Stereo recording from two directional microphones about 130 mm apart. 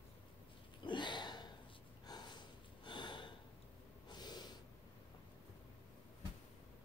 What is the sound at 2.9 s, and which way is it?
Sniff, 35° left (ahead or behind).